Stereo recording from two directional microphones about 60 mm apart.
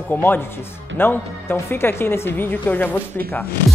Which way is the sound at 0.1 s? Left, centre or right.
Left.